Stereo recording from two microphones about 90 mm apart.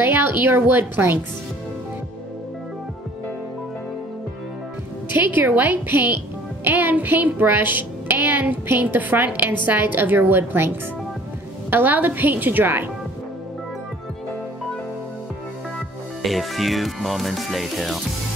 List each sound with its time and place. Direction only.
0.0 s a woman's voice: 20° right (ahead or behind)
5.1 s a woman's voice: 20° right (ahead or behind)
11.7 s a woman's voice: 20° right (ahead or behind)
16.2 s music: centre (ahead or behind)